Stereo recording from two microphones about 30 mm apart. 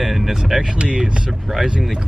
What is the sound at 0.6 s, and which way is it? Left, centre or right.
Speech, right.